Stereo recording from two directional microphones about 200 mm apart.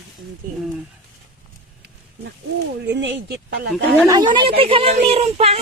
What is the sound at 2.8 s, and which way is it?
Speech, 60° right (ahead or behind).